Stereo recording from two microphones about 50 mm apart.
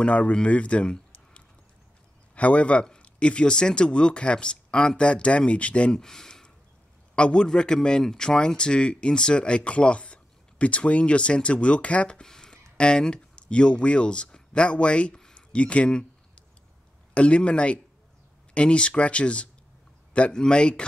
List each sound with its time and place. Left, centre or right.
0.0 s speech: left
5.9 s speech: centre
12.3 s speech: centre
17.1 s speech: left